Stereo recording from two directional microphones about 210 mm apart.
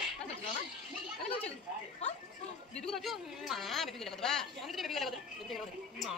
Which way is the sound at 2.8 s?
Centre (ahead or behind).